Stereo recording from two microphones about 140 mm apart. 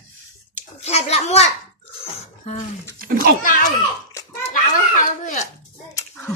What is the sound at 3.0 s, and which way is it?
Speech, 90° right.